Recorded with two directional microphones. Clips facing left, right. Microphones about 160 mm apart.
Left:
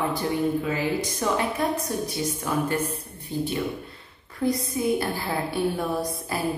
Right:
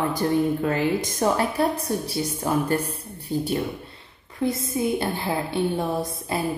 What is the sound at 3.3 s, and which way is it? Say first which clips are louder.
Speech: right 2 dB; 45° right (ahead or behind).